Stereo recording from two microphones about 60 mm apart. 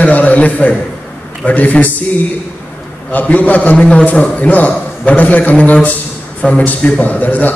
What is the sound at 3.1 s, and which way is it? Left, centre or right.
A man's voice, left.